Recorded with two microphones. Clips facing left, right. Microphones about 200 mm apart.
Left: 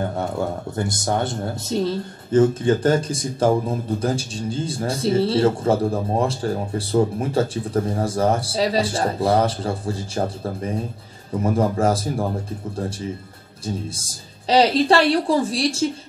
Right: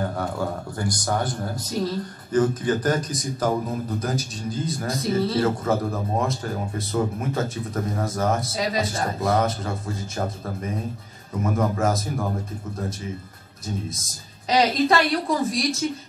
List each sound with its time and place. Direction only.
0.1 s a man's voice: 25° left (ahead or behind)
13.7 s a man's voice: 30° left (ahead or behind)